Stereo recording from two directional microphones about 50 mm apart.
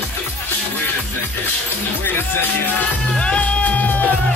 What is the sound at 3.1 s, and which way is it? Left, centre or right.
Music, left.